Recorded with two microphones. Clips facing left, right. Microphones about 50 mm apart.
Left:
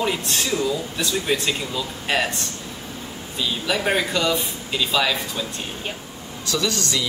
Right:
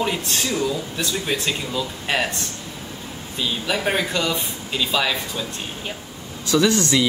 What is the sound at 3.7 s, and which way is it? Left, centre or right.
Speech, centre.